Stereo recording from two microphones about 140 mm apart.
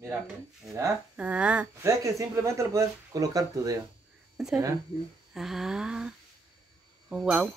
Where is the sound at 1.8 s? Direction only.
20° right (ahead or behind).